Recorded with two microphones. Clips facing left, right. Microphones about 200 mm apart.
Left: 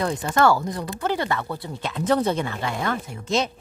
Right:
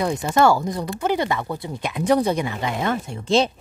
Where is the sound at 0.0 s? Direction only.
10° right (ahead or behind).